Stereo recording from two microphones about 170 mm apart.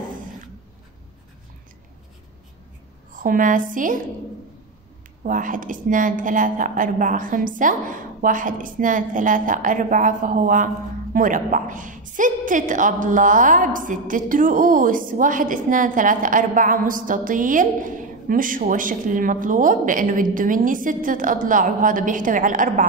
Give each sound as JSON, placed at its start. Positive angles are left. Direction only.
{"t": 3.2, "sound": "a woman's voice", "side_deg": -50}
{"t": 5.2, "sound": "a woman's voice", "side_deg": -50}